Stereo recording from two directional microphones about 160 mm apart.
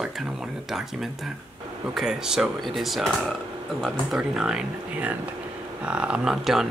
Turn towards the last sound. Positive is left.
turn(degrees=0)  # may be behind; listen again after turning